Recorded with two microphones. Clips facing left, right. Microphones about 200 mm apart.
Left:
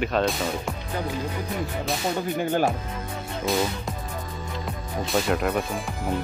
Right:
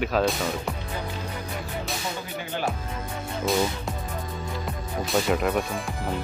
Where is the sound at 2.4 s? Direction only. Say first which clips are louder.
Left 8 dB; 50° left (ahead or behind).